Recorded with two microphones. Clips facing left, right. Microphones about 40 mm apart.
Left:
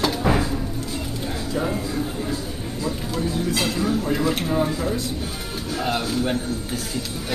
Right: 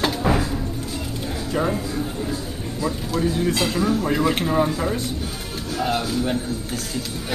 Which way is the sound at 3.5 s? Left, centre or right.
Centre.